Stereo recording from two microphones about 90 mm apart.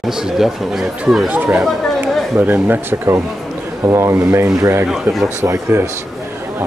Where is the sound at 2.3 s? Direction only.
20° right (ahead or behind).